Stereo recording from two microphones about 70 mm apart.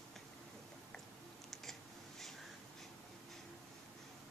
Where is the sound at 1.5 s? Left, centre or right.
Centre.